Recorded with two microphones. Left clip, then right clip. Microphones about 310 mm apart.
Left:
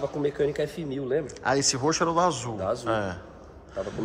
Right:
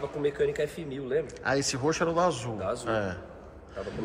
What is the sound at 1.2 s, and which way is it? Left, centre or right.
Speech, centre.